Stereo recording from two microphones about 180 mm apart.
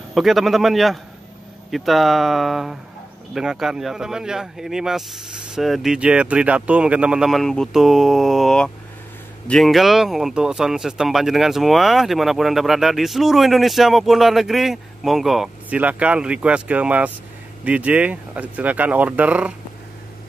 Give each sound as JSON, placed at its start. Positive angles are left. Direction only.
{"t": 0.1, "sound": "speech", "side_deg": 0}